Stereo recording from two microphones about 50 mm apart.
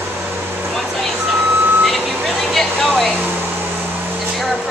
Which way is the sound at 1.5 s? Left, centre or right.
Right.